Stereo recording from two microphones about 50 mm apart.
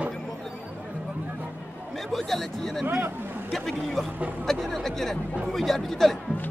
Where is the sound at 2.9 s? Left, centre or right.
Right.